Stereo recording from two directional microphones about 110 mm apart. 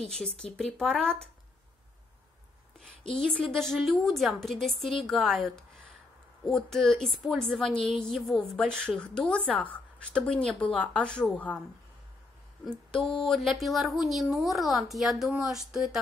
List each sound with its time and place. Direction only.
0.0 s a woman's voice: 5° left (ahead or behind)
3.1 s a woman's voice: 5° left (ahead or behind)
13.0 s a sound: 50° left (ahead or behind)
13.3 s a woman's voice: centre (ahead or behind)